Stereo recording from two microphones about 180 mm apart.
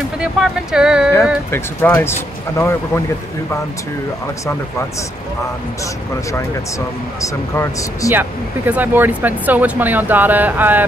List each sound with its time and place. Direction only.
0.2 s speech: 5° right (ahead or behind)
1.5 s speech: 15° left (ahead or behind)
7.2 s speech: 15° left (ahead or behind)
8.1 s speech: 10° right (ahead or behind)